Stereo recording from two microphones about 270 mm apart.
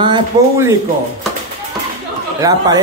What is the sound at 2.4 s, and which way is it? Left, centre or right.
Speech, centre.